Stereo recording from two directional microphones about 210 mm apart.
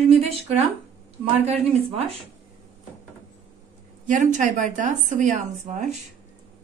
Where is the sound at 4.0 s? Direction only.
35° right (ahead or behind).